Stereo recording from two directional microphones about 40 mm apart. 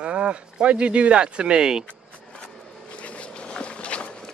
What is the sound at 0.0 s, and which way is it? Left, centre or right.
Speech, right.